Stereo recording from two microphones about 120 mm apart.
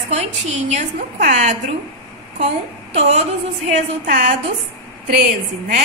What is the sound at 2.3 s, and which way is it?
Speech, 65° right (ahead or behind).